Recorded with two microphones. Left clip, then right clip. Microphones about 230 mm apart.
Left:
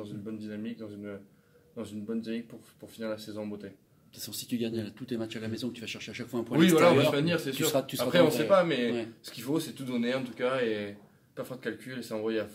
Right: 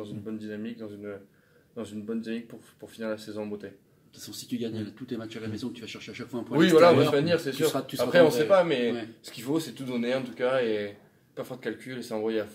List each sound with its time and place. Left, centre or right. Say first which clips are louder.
0.0 s speech: right 3 dB; centre
4.2 s speech: even; left
6.5 s speech: right 4 dB; centre
7.7 s speech: left 2 dB; left
8.0 s speech: right 5 dB; centre